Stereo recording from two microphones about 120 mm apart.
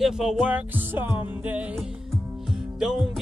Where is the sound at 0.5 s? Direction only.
15° right (ahead or behind).